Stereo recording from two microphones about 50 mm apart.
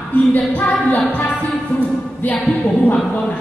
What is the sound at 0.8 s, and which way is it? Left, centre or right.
Music, left.